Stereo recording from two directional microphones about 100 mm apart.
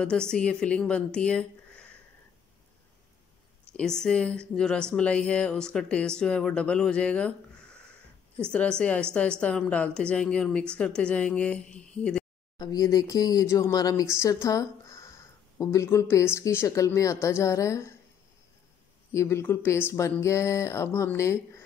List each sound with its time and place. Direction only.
0.0 s a woman's voice: 10° left (ahead or behind)
3.7 s a woman's voice: 5° left (ahead or behind)
8.5 s a woman's voice: 10° left (ahead or behind)
12.5 s speech: 40° left (ahead or behind)
19.1 s speech: 25° left (ahead or behind)